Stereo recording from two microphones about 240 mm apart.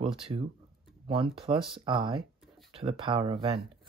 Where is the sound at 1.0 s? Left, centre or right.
Right.